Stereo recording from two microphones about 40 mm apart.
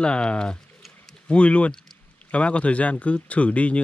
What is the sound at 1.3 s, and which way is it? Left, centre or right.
Speech, left.